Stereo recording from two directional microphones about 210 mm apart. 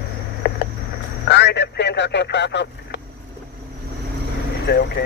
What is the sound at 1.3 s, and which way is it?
Radio, 55° left (ahead or behind).